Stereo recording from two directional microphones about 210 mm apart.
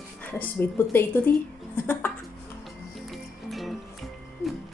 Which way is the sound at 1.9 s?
10° left (ahead or behind).